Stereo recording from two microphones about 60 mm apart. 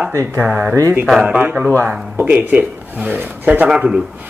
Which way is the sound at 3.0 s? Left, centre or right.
Right.